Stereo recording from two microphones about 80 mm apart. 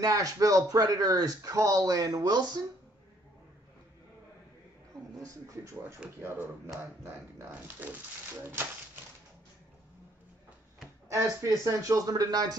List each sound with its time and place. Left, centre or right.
0.0 s speech: right
5.1 s speech: right
7.0 s speech: right
11.1 s speech: right